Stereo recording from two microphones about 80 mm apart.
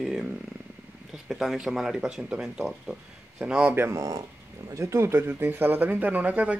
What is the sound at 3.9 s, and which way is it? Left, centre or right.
Speech, right.